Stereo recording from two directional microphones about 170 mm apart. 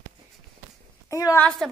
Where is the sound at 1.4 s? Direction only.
Centre (ahead or behind).